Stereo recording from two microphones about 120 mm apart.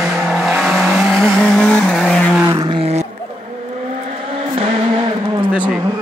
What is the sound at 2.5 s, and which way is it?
Vehicle, 35° right (ahead or behind).